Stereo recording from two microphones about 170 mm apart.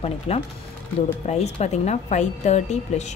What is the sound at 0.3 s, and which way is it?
A woman's voice, 35° left (ahead or behind).